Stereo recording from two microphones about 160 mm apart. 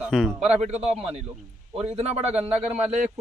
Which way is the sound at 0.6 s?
40° right (ahead or behind).